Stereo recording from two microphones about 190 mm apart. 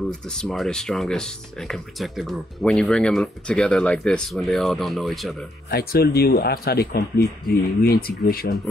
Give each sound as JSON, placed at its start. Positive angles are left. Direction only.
{"t": 0.1, "sound": "speech", "side_deg": 5}
{"t": 5.7, "sound": "speech", "side_deg": 55}